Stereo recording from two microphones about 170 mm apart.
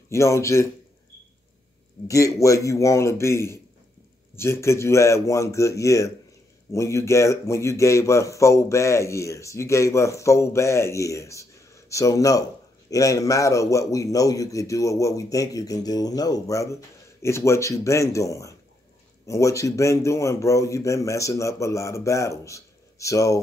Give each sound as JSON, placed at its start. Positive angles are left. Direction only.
{"t": 0.1, "sound": "a man's voice", "side_deg": 15}
{"t": 2.0, "sound": "a man's voice", "side_deg": 20}